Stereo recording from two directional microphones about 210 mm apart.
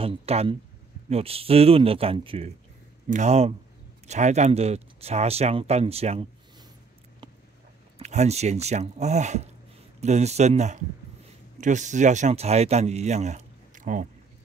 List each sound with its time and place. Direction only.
0.0 s speech: 30° right (ahead or behind)
8.0 s speech: 30° right (ahead or behind)